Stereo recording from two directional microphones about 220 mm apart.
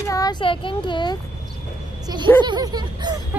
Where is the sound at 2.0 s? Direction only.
15° right (ahead or behind).